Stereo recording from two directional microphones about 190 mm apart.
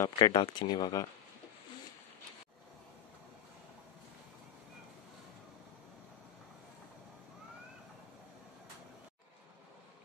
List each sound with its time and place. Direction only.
0.0 s speech: 20° left (ahead or behind)